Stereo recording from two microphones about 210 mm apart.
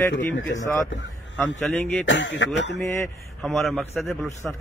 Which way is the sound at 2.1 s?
60° left (ahead or behind).